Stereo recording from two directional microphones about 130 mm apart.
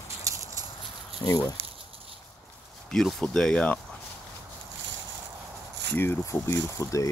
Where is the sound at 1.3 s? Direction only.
30° left (ahead or behind).